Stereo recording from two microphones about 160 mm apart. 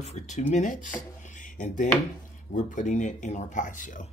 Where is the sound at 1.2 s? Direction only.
55° left (ahead or behind).